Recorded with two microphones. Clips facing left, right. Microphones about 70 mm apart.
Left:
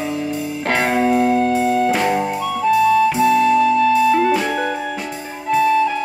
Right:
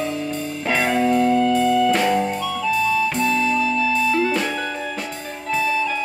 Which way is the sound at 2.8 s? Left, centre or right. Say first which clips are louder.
Left 8 dB; left.